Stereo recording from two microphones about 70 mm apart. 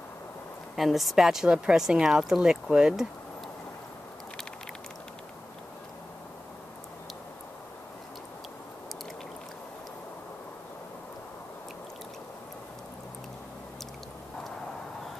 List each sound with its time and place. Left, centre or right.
0.7 s a woman's voice: centre